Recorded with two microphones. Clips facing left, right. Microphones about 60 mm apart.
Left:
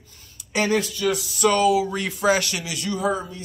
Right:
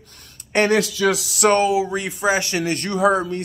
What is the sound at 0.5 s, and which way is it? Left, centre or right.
Speech, right.